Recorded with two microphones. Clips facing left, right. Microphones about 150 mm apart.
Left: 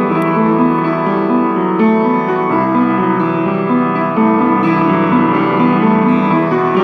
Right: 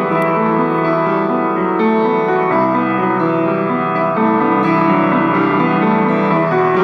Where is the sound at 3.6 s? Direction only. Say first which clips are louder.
Left 3 dB; 15° left (ahead or behind).